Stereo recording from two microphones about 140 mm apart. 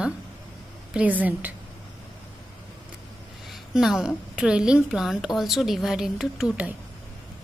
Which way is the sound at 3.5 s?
5° right (ahead or behind).